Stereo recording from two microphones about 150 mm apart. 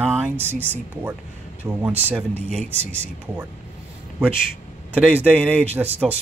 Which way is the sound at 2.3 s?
45° right (ahead or behind).